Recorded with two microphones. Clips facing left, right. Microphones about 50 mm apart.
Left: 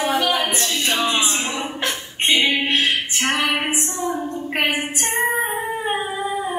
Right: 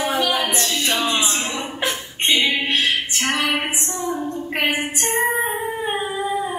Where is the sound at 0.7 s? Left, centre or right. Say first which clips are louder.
Left 1 dB; centre.